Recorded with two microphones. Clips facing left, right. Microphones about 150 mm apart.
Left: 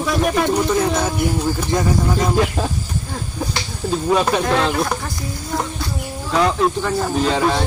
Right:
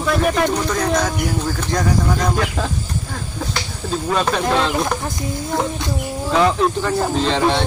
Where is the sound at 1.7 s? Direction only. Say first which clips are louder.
Right 1 dB; 20° left (ahead or behind).